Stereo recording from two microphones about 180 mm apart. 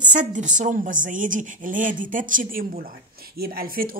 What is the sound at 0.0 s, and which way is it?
A woman's voice, 45° right (ahead or behind).